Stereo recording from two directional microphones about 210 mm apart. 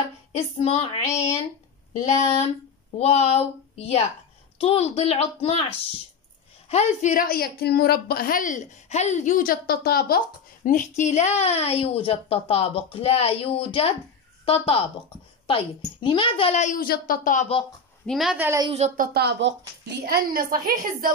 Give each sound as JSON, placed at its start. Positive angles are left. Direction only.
{"t": 0.3, "sound": "a woman's voice", "side_deg": 30}
{"t": 3.0, "sound": "a child's voice", "side_deg": 30}
{"t": 18.0, "sound": "a woman's voice", "side_deg": 0}
{"t": 18.7, "sound": "speech", "side_deg": -30}
{"t": 19.1, "sound": "a woman's voice", "side_deg": -55}